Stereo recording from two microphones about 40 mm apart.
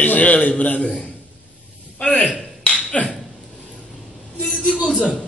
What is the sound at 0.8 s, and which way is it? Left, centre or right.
Speech, left.